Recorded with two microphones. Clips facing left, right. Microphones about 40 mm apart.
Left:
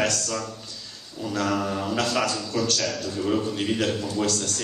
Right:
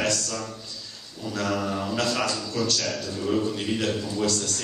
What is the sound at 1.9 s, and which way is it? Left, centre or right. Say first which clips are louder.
A man's voice: left 2 dB; centre.